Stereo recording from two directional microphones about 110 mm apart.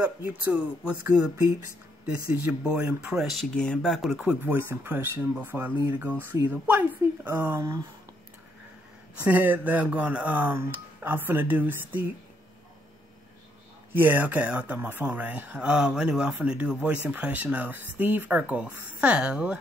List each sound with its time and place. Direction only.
0.0 s speech: 15° right (ahead or behind)
2.4 s speech: 10° right (ahead or behind)
3.3 s speech: 5° left (ahead or behind)
4.2 s speech: 15° right (ahead or behind)
9.2 s speech: 15° right (ahead or behind)
13.9 s speech: 15° right (ahead or behind)